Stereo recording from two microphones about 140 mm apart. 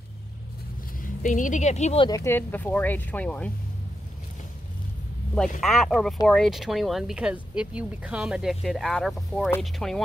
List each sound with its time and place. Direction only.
1.0 s a woman's voice: 65° left (ahead or behind)
2.0 s speech: 25° left (ahead or behind); by 3.5 s 10° left (ahead or behind)
5.6 s speech: centre (ahead or behind)